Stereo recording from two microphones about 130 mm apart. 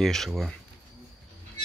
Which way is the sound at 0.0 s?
Centre (ahead or behind).